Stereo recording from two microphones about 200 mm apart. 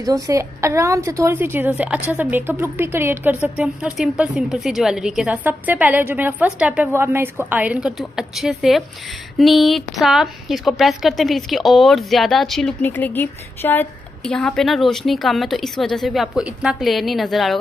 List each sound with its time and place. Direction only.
0.0 s a woman's voice: 15° right (ahead or behind); by 17.6 s centre (ahead or behind)